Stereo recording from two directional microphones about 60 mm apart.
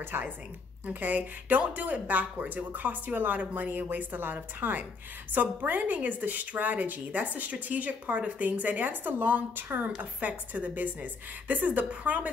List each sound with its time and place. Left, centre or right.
0.0 s a woman's voice: right
0.8 s a woman's voice: right